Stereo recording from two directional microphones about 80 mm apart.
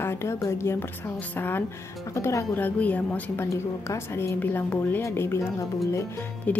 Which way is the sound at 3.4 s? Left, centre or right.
Left.